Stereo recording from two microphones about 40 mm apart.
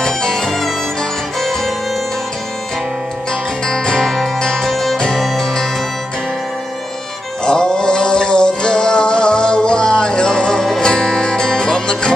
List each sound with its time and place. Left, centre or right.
0.0 s music: centre
3.6 s music: centre
4.6 s music: centre
7.4 s male singing: centre
10.8 s music: centre